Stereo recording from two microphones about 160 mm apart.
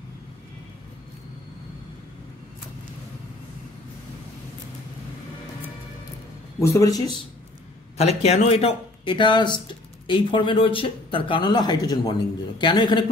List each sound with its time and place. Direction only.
6.6 s speech: 20° left (ahead or behind)
8.0 s speech: 40° left (ahead or behind)